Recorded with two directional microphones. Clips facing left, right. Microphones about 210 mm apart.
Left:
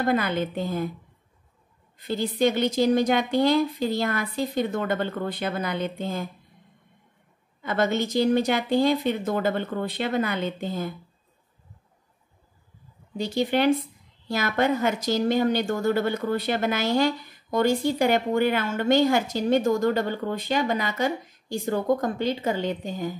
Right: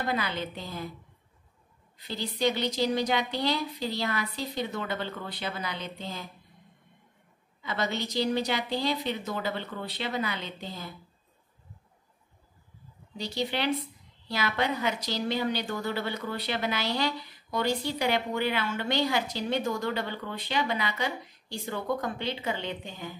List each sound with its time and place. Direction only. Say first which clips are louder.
0.0 s a woman's voice: left 7 dB; 50° left (ahead or behind)
2.0 s a woman's voice: left 8 dB; 50° left (ahead or behind)
7.6 s a woman's voice: left 7 dB; 50° left (ahead or behind)
13.2 s a woman's voice: left 8 dB; 50° left (ahead or behind)